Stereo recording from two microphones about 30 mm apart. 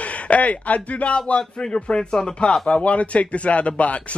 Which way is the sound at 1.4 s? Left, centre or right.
Left.